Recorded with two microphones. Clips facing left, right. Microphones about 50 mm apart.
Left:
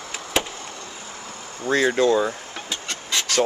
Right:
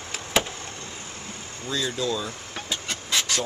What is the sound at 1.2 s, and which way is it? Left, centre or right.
Vehicle, left.